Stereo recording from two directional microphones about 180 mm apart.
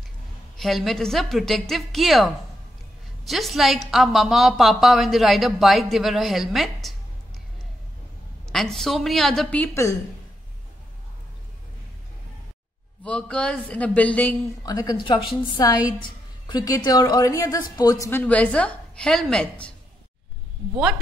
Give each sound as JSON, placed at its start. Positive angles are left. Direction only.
{"t": 0.6, "sound": "a woman's voice", "side_deg": 0}
{"t": 8.5, "sound": "a woman's voice", "side_deg": 0}
{"t": 13.0, "sound": "speech", "side_deg": 5}
{"t": 14.6, "sound": "a woman's voice", "side_deg": 20}